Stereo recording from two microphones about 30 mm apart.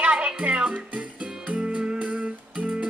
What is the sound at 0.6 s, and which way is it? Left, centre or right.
Speech, right.